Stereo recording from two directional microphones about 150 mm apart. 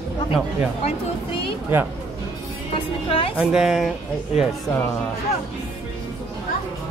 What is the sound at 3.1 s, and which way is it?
Speech, 40° left (ahead or behind).